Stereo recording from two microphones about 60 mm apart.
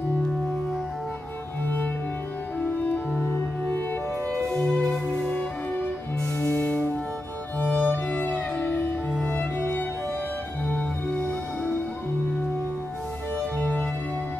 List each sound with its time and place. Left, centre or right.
7.5 s music: left
13.6 s music: left